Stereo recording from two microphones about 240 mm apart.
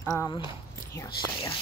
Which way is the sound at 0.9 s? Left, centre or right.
Centre.